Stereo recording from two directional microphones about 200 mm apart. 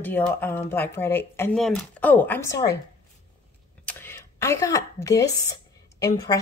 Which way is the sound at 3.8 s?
10° left (ahead or behind).